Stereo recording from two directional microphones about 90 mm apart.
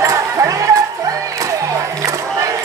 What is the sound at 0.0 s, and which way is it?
Music, 35° right (ahead or behind).